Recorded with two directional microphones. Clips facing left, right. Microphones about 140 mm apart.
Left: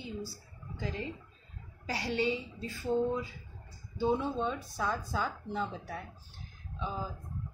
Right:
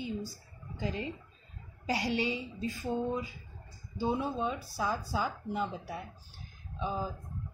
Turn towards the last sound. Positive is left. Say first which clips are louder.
# right 3 dB
turn(degrees=-15)  # may be behind; listen again after turning